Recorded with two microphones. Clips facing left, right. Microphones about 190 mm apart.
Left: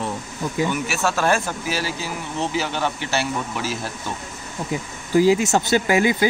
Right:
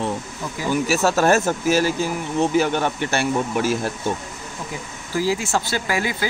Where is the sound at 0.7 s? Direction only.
35° right (ahead or behind).